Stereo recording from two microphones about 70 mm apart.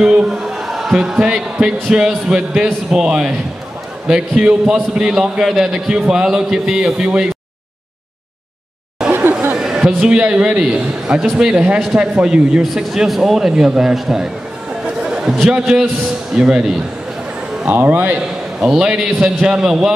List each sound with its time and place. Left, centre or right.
0.0 s a man's voice: centre
9.0 s chatter: centre
9.5 s a man's voice: centre
15.0 s a sound: centre
15.5 s a man's voice: centre
17.6 s a man's voice: right
18.6 s a man's voice: centre